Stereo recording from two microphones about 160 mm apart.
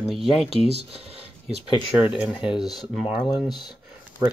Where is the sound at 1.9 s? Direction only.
10° right (ahead or behind).